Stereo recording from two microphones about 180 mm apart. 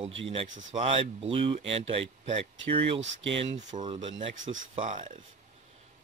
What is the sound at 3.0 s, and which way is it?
Speech, 90° right.